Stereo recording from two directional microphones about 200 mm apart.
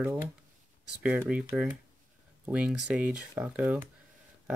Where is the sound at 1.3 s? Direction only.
5° right (ahead or behind).